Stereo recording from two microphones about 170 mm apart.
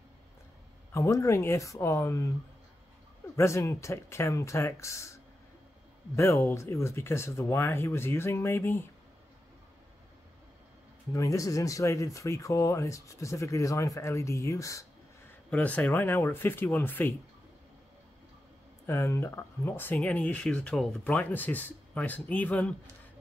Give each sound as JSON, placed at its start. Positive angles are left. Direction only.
{"t": 0.9, "sound": "speech", "side_deg": 20}
{"t": 3.3, "sound": "speech", "side_deg": 15}
{"t": 11.1, "sound": "speech", "side_deg": 20}
{"t": 15.5, "sound": "speech", "side_deg": 10}
{"t": 18.9, "sound": "speech", "side_deg": 15}